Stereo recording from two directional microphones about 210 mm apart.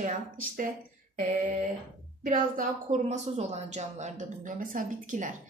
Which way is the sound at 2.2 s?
40° right (ahead or behind).